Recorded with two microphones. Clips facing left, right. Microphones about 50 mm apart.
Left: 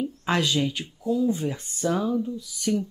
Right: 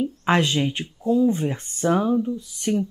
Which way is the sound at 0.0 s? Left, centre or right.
Right.